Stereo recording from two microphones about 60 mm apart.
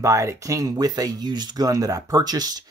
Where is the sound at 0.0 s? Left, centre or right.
Right.